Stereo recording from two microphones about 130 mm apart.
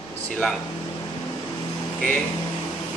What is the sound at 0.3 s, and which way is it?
Speech, 5° left (ahead or behind).